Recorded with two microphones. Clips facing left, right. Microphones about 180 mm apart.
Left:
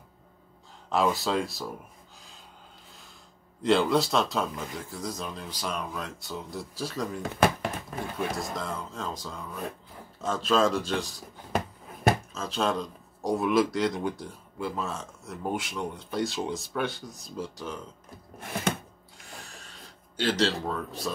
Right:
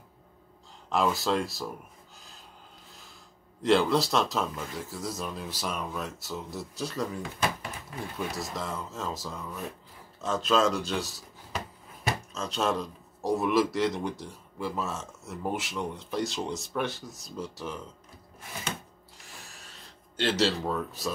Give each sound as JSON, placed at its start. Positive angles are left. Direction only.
{"t": 0.9, "sound": "speech", "side_deg": 0}
{"t": 3.6, "sound": "speech", "side_deg": 0}
{"t": 8.4, "sound": "speech", "side_deg": 0}
{"t": 11.5, "sound": "a sound", "side_deg": 50}
{"t": 12.4, "sound": "speech", "side_deg": 0}
{"t": 18.4, "sound": "a sound", "side_deg": 60}
{"t": 20.2, "sound": "speech", "side_deg": 0}